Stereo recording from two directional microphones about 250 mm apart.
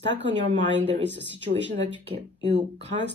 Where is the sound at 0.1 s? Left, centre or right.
Right.